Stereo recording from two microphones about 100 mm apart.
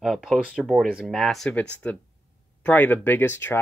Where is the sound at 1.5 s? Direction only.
15° left (ahead or behind).